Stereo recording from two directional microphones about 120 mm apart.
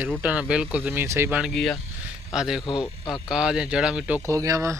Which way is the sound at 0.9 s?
20° right (ahead or behind).